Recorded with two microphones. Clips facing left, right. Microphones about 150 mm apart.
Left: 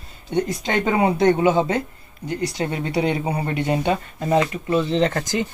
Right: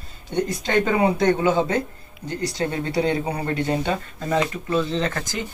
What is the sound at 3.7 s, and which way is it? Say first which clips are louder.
Speech: left 2 dB; 20° left (ahead or behind).